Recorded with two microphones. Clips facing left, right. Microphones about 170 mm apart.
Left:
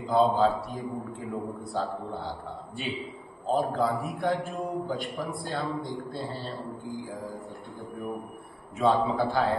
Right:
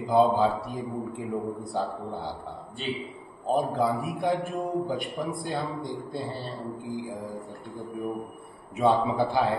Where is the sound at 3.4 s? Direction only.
15° right (ahead or behind).